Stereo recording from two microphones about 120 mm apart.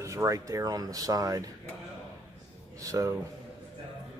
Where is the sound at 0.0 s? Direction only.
25° right (ahead or behind).